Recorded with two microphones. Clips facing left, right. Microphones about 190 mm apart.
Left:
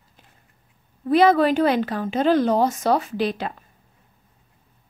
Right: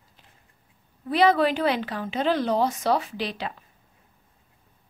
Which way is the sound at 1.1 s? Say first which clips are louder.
Left 4 dB; 45° left (ahead or behind).